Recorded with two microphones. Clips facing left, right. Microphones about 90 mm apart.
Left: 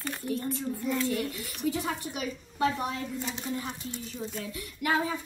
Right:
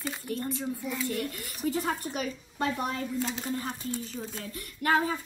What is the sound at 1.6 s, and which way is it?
A woman's voice, 40° right (ahead or behind).